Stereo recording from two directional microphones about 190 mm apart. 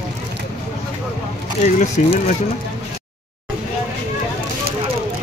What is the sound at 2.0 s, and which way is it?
Speech, 40° left (ahead or behind).